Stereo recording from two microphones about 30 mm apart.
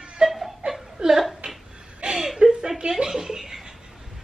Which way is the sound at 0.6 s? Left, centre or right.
Right.